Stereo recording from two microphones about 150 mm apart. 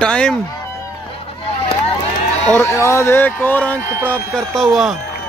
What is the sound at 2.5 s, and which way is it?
Speech, 20° left (ahead or behind).